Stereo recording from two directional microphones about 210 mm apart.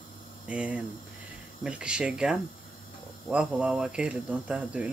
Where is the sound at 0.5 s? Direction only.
5° right (ahead or behind).